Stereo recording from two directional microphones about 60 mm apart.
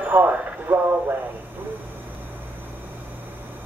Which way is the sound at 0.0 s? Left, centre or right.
Right.